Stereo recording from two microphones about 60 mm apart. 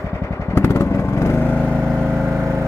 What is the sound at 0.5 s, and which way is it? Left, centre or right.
Vehicle, left.